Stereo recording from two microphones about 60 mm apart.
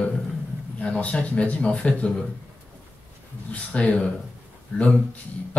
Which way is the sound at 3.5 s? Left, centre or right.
Left.